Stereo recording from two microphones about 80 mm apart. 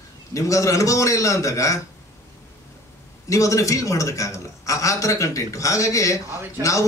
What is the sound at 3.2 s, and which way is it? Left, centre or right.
A man's voice, left.